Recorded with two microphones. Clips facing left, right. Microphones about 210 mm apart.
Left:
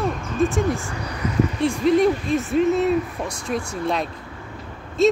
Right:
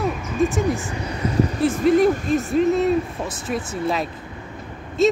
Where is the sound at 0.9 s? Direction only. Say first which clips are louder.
Right 2 dB; 25° right (ahead or behind).